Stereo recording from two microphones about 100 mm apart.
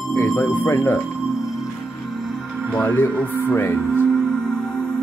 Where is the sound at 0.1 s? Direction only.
30° left (ahead or behind).